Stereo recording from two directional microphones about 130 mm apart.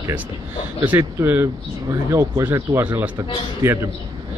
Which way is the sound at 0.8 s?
15° right (ahead or behind).